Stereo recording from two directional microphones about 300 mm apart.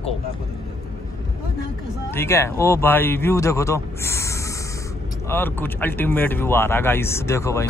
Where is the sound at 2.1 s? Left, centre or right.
Centre.